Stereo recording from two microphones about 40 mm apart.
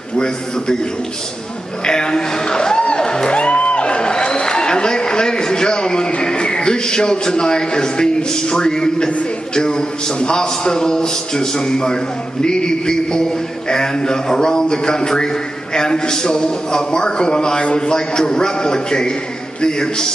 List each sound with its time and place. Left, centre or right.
1.9 s music: centre
9.6 s a man's voice: centre